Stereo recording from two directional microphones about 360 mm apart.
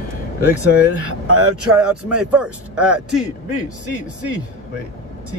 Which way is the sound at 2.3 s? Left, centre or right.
Centre.